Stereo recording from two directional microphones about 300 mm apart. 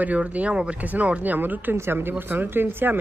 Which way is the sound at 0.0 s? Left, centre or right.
Centre.